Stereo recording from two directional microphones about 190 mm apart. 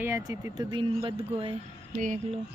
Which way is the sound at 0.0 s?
15° right (ahead or behind).